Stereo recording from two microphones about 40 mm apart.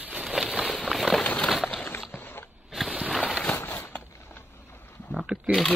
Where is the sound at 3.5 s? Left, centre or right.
Left.